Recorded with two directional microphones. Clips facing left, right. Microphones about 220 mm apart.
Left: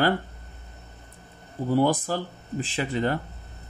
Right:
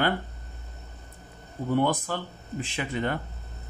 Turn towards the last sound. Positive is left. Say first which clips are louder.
# left 3 dB
turn(degrees=35)  # may be behind; listen again after turning